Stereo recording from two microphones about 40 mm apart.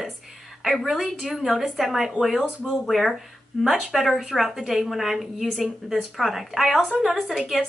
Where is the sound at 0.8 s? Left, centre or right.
Centre.